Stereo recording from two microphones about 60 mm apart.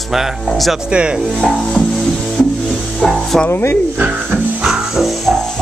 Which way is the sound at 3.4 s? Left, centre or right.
Left.